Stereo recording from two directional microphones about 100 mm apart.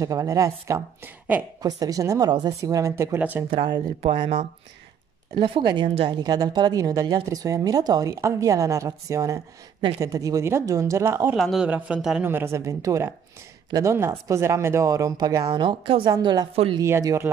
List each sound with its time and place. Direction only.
0.0 s speech: 35° right (ahead or behind)
1.0 s a woman's voice: 15° right (ahead or behind)
1.6 s speech: 40° right (ahead or behind)
3.2 s speech: 15° right (ahead or behind)
3.4 s speech: 50° right (ahead or behind)
5.3 s speech: 55° right (ahead or behind)
6.1 s speech: 40° right (ahead or behind)
8.1 s speech: 30° right (ahead or behind)
11.3 s speech: centre (ahead or behind)
11.6 s speech: 10° right (ahead or behind)
12.2 s speech: 20° right (ahead or behind); by 16.4 s 50° right (ahead or behind)
16.8 s speech: 30° right (ahead or behind)